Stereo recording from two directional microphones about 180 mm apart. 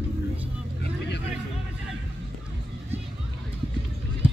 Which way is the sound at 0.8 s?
70° left (ahead or behind).